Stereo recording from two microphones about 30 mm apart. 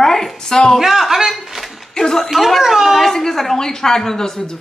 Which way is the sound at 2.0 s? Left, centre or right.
Centre.